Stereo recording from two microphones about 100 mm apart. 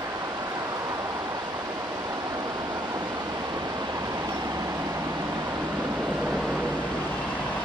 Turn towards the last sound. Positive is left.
turn(degrees=-10)  # may be behind; listen again after turning